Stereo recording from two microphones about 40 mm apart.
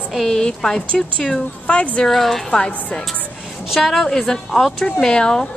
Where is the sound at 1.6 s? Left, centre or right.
Left.